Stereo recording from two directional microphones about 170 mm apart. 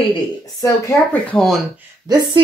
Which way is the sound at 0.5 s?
20° left (ahead or behind).